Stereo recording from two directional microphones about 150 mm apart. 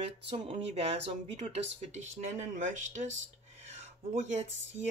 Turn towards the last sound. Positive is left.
turn(degrees=-50)  # may be behind; listen again after turning